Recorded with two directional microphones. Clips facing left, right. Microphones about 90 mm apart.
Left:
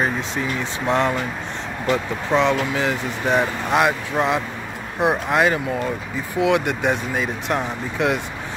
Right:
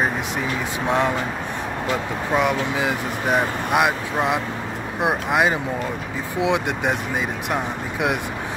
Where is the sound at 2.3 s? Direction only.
5° right (ahead or behind).